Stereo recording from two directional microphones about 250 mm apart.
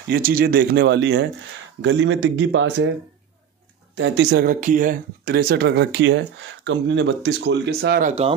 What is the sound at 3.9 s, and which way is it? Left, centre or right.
Speech, right.